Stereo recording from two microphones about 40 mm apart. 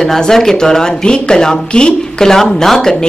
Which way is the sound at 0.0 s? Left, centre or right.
Centre.